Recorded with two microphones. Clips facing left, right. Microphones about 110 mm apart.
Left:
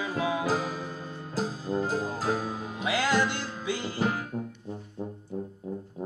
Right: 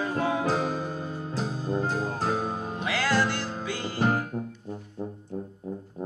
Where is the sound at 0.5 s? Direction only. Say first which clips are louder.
Right 2 dB; 55° right (ahead or behind).